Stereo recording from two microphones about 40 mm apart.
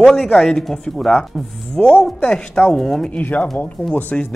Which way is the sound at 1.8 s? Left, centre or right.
Left.